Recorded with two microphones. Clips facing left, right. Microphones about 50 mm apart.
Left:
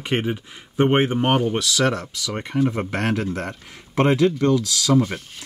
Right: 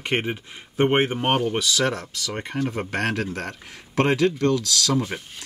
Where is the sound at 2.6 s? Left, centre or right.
Centre.